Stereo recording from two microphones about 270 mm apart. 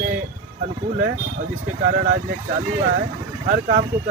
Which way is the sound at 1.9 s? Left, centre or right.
Right.